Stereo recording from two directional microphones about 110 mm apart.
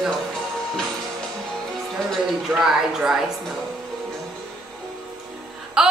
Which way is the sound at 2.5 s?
5° right (ahead or behind).